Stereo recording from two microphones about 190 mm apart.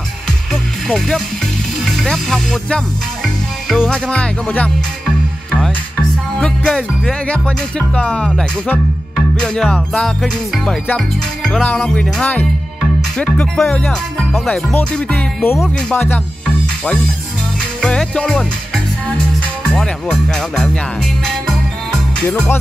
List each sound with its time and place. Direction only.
0.8 s music: centre (ahead or behind)
6.3 s music: 5° left (ahead or behind)
17.8 s music: 5° left (ahead or behind)
19.1 s speech: 5° left (ahead or behind)
22.3 s music: 10° left (ahead or behind)